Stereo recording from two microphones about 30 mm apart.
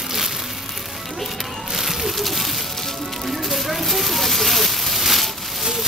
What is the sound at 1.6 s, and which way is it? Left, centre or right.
Music, centre.